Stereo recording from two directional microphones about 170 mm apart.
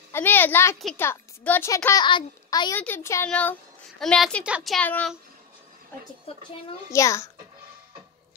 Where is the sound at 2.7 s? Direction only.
15° left (ahead or behind).